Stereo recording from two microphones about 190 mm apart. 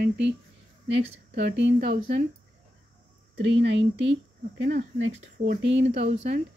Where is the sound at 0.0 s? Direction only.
70° right (ahead or behind).